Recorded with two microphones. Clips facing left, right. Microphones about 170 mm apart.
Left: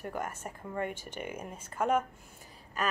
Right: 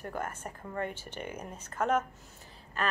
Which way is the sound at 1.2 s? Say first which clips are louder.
Even; 10° left (ahead or behind).